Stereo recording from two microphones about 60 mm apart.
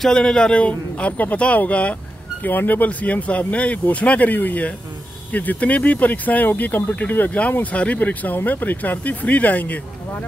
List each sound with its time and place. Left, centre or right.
0.0 s speech: centre